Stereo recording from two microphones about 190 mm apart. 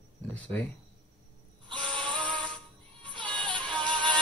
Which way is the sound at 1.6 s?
25° right (ahead or behind).